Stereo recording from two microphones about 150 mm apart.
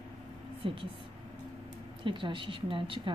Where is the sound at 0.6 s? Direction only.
35° right (ahead or behind).